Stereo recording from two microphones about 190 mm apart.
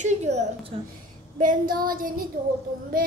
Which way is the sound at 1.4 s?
45° right (ahead or behind).